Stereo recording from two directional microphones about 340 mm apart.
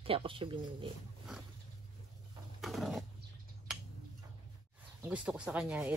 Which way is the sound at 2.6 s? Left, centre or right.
Centre.